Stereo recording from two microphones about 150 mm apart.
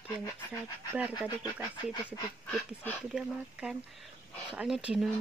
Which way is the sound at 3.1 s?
5° right (ahead or behind).